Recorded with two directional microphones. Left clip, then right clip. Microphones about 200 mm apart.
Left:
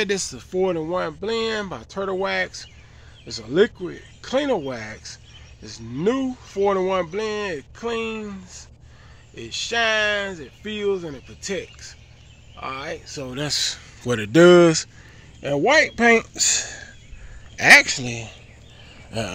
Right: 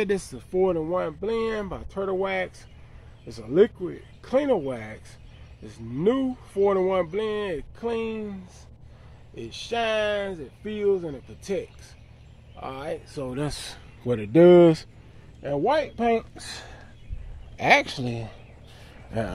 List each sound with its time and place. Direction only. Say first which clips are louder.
0.0 s speech: left 3 dB; 5° right (ahead or behind)
13.5 s a man's voice: left 13 dB; 25° right (ahead or behind)
14.0 s speech: left 3 dB; centre (ahead or behind)
15.4 s a man's voice: left 6 dB; 20° left (ahead or behind)
17.6 s speech: left 8 dB; centre (ahead or behind); by 18.3 s 15° right (ahead or behind)
19.0 s a sound: left 2 dB; 5° right (ahead or behind)